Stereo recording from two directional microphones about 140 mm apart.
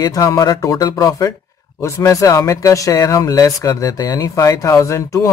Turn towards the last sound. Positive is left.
turn(degrees=20)  # may be behind; listen again after turning